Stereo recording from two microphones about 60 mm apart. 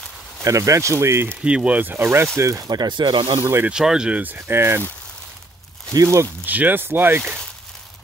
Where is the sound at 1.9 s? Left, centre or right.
Right.